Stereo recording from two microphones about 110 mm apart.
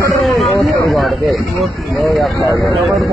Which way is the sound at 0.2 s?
Centre (ahead or behind).